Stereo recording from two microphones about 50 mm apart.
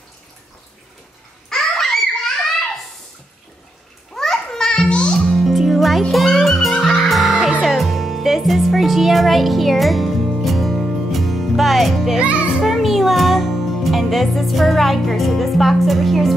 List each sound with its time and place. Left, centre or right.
1.5 s babbling: centre
4.1 s music: centre
5.2 s music: centre
12.2 s music: right
12.6 s speech: centre